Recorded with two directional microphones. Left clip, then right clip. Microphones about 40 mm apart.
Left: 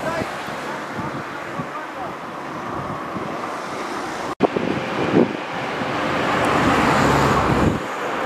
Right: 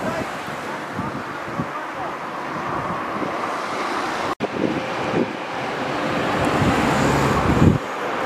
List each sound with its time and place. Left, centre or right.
4.9 s vehicle: centre